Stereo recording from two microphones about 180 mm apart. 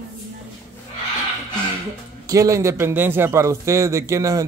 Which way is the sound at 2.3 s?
20° right (ahead or behind).